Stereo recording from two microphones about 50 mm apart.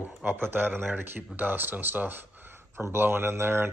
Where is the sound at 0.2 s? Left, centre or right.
Right.